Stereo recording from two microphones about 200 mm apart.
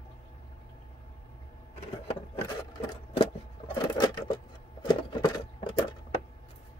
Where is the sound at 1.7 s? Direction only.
30° left (ahead or behind).